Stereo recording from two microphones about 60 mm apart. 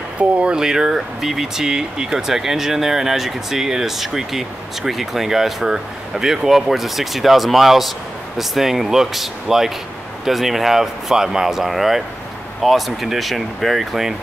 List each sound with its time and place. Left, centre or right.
0.2 s speech: right
0.6 s speech: centre